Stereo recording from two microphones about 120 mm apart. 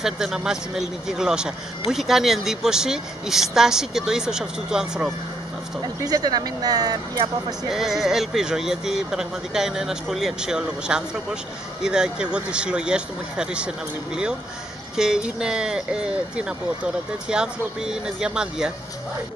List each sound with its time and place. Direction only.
0.0 s speech: 5° right (ahead or behind)
6.0 s speech: 35° right (ahead or behind)
7.7 s speech: 5° right (ahead or behind)
15.0 s speech: 5° right (ahead or behind)